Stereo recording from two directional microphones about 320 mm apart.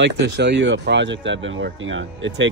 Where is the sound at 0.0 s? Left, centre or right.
Right.